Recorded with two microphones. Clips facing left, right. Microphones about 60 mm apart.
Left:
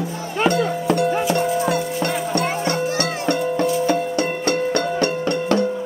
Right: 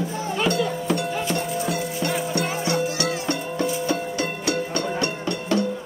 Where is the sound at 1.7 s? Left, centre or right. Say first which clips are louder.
Left 4 dB; left.